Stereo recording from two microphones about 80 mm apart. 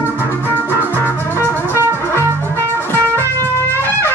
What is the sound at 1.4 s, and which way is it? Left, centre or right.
Music, right.